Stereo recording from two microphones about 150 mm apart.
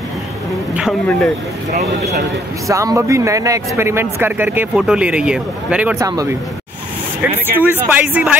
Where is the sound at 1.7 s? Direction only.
50° right (ahead or behind).